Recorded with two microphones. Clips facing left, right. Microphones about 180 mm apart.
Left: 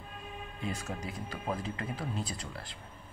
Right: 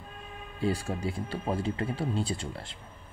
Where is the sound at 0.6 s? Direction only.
30° right (ahead or behind).